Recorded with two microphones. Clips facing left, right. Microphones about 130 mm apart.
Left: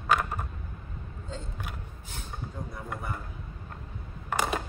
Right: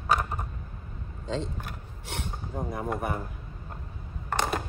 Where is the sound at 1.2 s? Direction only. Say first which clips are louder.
Right 10 dB; 90° right.